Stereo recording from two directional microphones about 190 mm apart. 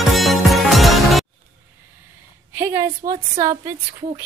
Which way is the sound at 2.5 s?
15° right (ahead or behind).